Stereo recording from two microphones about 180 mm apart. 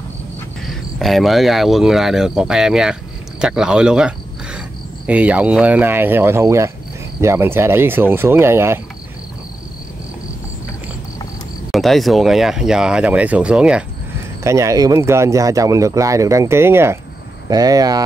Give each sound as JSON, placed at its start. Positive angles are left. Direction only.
{"t": 0.7, "sound": "speech", "side_deg": 0}
{"t": 11.7, "sound": "speech", "side_deg": 0}
{"t": 14.4, "sound": "speech", "side_deg": -15}